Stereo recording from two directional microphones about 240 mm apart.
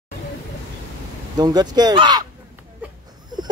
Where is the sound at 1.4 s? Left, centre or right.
Centre.